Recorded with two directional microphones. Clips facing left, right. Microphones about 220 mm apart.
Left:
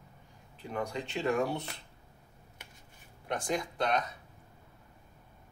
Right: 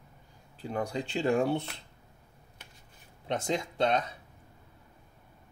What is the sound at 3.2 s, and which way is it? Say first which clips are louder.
Speech: right 2 dB; 25° right (ahead or behind).